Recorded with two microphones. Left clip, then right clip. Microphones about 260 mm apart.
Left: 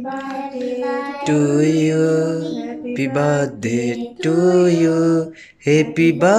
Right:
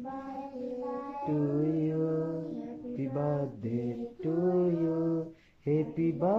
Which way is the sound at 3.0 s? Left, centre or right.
Left.